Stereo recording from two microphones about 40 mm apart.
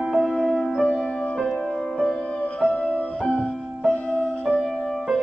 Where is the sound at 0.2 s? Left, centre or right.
Centre.